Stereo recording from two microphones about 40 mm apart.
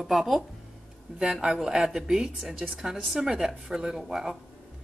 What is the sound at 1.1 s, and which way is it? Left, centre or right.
Speech, centre.